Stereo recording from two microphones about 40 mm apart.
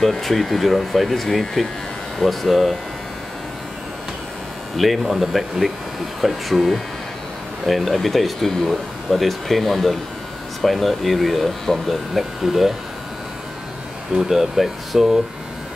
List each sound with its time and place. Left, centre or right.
0.0 s speech: centre
4.7 s speech: centre
14.1 s speech: centre